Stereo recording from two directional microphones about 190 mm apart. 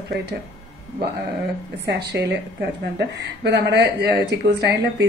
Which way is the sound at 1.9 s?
60° right (ahead or behind).